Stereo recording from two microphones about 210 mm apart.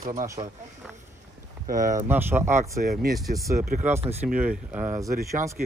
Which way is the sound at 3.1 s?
Centre (ahead or behind).